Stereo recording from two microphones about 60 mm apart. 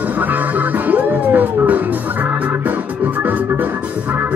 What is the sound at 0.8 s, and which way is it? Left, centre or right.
Music, right.